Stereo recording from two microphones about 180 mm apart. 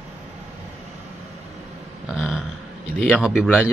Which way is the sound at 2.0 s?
5° right (ahead or behind).